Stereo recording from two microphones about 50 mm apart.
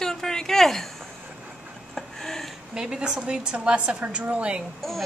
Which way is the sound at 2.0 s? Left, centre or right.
Centre.